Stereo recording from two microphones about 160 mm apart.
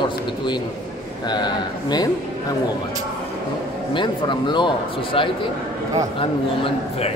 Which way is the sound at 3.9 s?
30° left (ahead or behind).